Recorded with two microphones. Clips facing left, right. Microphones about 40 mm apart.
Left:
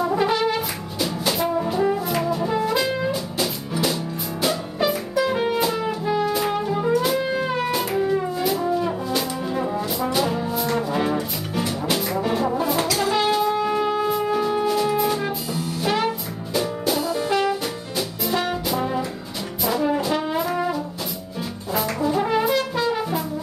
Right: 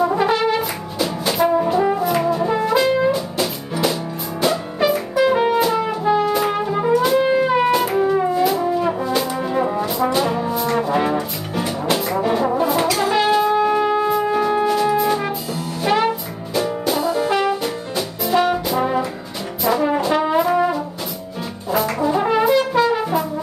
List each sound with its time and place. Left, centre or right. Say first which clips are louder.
0.0 s brass instrument: right 3 dB; centre
4.4 s music: right 4 dB; centre
7.3 s brass instrument: right 7 dB; centre
12.9 s music: right 4 dB; centre
15.8 s brass instrument: right 5 dB; centre
22.4 s brass instrument: right 6 dB; centre